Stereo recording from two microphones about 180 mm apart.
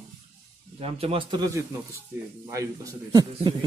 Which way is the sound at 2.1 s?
10° right (ahead or behind).